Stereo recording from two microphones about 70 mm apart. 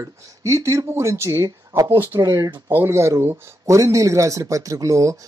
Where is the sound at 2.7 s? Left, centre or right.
Right.